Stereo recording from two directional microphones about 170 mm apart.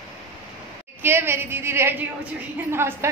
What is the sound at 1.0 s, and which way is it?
A woman's voice, 15° right (ahead or behind).